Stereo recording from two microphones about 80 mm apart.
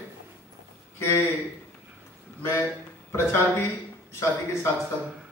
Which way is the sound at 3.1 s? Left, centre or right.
Left.